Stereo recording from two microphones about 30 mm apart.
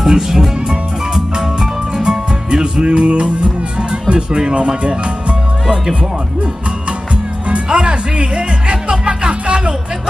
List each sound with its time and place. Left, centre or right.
0.0 s music: centre; by 3.5 s right
4.1 s speech: right
7.7 s music: right